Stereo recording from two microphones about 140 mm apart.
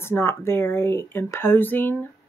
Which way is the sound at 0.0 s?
20° left (ahead or behind).